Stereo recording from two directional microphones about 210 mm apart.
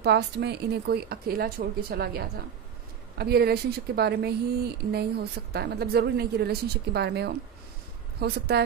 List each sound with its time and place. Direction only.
0.0 s speech: 50° right (ahead or behind)